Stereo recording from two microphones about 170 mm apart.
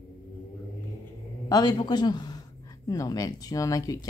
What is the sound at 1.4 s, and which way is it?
A man's voice, 20° left (ahead or behind).